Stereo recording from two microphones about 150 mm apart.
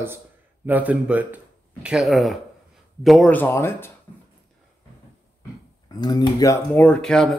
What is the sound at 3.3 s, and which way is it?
Speech, 15° left (ahead or behind).